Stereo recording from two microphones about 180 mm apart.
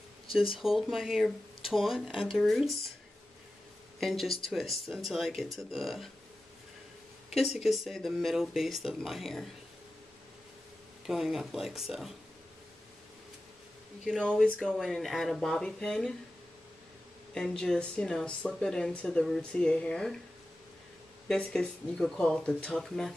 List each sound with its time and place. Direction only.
0.3 s speech: 30° left (ahead or behind)
0.6 s speech: centre (ahead or behind)
4.0 s speech: centre (ahead or behind)
7.3 s speech: centre (ahead or behind)
11.1 s speech: centre (ahead or behind)
14.0 s speech: centre (ahead or behind)
17.3 s speech: 5° left (ahead or behind)
21.3 s speech: 5° left (ahead or behind)